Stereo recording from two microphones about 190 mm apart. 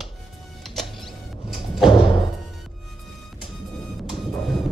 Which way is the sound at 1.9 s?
25° left (ahead or behind).